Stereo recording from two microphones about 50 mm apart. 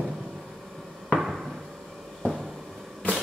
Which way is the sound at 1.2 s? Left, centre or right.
Centre.